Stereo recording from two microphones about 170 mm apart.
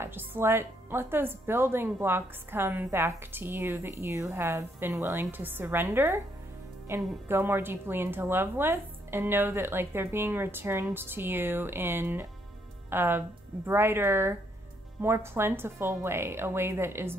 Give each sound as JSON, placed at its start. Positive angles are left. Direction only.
{"t": 0.0, "sound": "speech", "side_deg": -15}